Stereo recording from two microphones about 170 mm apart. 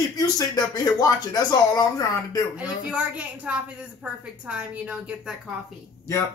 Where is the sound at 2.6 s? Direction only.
10° right (ahead or behind).